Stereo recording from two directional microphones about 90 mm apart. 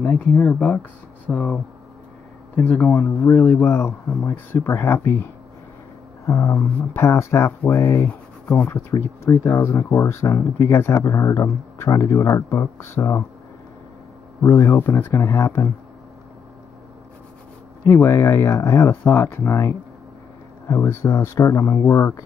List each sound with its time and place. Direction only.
0.0 s speech: 25° left (ahead or behind)
3.6 s speech: 30° left (ahead or behind)
6.2 s speech: 35° left (ahead or behind)
14.4 s speech: 35° left (ahead or behind)
17.8 s speech: 25° left (ahead or behind)